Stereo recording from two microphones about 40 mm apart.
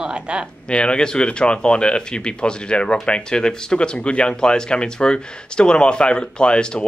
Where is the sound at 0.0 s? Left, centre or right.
Right.